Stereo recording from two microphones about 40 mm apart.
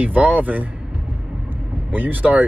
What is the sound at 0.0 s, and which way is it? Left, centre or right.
Speech, right.